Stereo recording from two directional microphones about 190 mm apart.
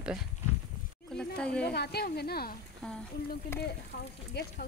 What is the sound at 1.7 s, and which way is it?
Speech, 60° left (ahead or behind).